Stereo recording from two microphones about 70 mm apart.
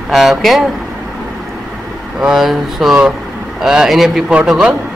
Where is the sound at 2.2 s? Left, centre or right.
Centre.